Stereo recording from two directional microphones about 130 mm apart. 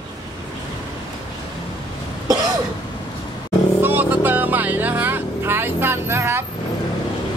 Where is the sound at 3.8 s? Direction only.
15° right (ahead or behind).